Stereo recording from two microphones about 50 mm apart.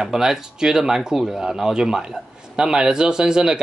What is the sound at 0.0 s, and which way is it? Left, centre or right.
Speech, centre.